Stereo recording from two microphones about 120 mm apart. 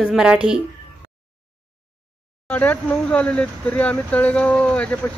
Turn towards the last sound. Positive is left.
turn(degrees=10)  # may be behind; listen again after turning